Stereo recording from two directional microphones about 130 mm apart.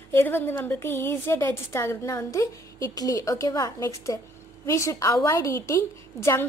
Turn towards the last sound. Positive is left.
turn(degrees=20)  # may be behind; listen again after turning